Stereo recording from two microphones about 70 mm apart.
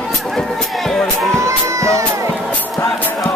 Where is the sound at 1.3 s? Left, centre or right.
Right.